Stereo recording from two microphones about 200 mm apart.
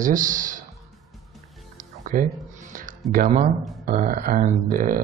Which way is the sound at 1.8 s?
40° right (ahead or behind).